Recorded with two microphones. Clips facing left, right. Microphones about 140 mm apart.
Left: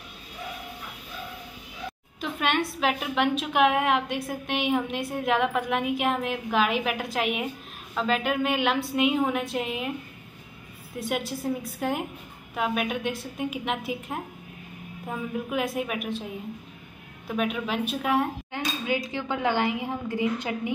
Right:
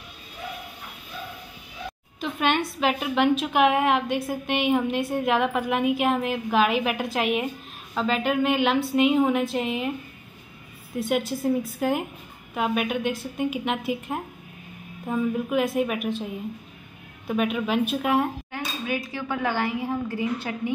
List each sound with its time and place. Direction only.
2.1 s a woman's voice: centre (ahead or behind)
11.0 s a woman's voice: centre (ahead or behind)
17.4 s a woman's voice: centre (ahead or behind)
18.5 s speech: 20° left (ahead or behind)